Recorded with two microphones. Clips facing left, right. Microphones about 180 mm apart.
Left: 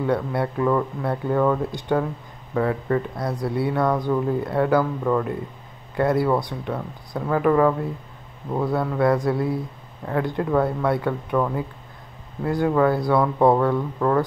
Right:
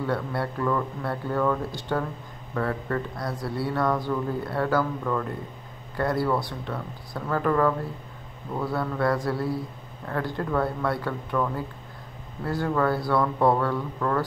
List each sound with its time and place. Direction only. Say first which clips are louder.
0.0 s speech: left 5 dB; 20° left (ahead or behind)